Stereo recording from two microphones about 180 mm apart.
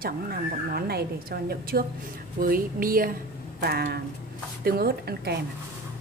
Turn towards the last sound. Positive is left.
turn(degrees=-60)  # may be behind; listen again after turning